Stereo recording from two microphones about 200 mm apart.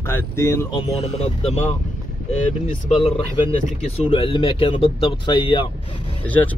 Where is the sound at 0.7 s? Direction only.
30° left (ahead or behind).